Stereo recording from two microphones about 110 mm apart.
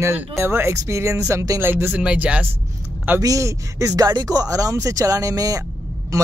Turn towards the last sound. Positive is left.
turn(degrees=-30)  # may be behind; listen again after turning